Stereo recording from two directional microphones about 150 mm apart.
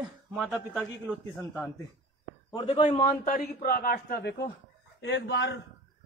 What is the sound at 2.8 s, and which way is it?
Speech, 40° left (ahead or behind).